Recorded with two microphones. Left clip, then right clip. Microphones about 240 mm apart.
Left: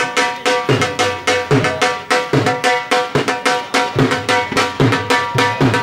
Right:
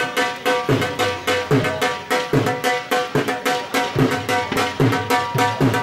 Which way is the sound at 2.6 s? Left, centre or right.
Centre.